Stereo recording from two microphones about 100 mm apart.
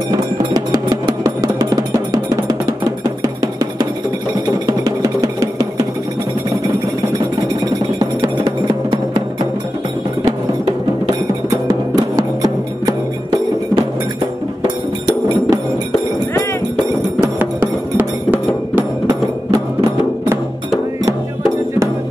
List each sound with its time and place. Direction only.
0.5 s music: 40° right (ahead or behind)
4.6 s music: 40° right (ahead or behind)
12.2 s music: 40° right (ahead or behind)
15.0 s music: 45° right (ahead or behind)
17.2 s music: 20° right (ahead or behind)
19.0 s music: 30° right (ahead or behind)